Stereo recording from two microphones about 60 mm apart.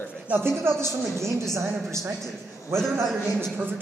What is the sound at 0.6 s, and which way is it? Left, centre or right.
A woman's voice, right.